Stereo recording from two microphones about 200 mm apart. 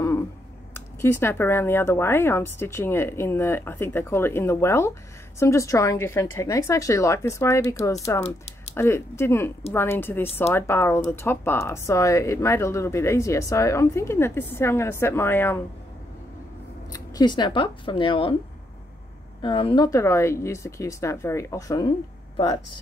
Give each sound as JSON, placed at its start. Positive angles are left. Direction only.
{"t": 0.7, "sound": "speech", "side_deg": 10}
{"t": 16.9, "sound": "speech", "side_deg": 20}
{"t": 19.4, "sound": "speech", "side_deg": 25}